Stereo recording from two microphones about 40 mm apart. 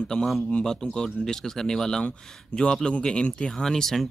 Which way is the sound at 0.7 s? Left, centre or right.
Centre.